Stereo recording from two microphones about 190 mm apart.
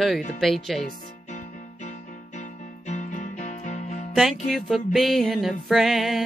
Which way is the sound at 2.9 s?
40° left (ahead or behind).